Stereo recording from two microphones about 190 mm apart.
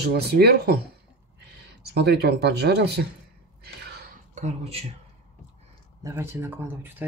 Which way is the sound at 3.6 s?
55° right (ahead or behind).